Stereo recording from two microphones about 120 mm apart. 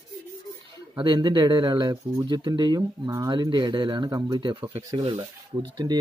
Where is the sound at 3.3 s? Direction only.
40° right (ahead or behind).